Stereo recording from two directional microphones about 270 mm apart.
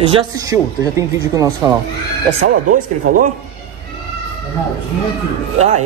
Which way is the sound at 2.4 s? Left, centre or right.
Right.